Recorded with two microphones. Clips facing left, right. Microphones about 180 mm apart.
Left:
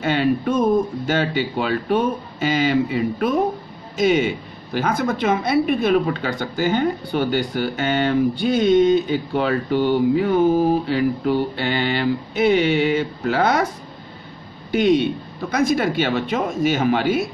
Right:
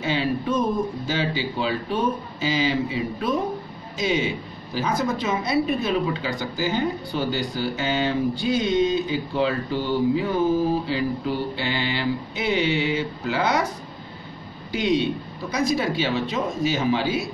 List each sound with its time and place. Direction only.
0.0 s speech: 55° left (ahead or behind)
14.7 s speech: 55° left (ahead or behind)